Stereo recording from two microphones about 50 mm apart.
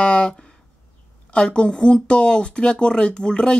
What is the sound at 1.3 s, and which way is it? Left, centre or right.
A woman's voice, centre.